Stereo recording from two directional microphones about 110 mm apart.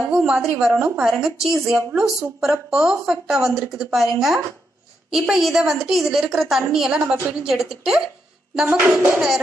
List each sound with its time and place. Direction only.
0.1 s a woman's voice: 5° right (ahead or behind)
8.6 s speech: 15° right (ahead or behind)